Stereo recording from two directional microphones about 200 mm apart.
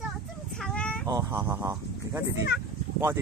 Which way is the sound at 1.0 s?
15° right (ahead or behind).